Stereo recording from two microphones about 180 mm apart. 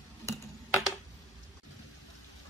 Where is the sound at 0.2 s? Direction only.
15° left (ahead or behind).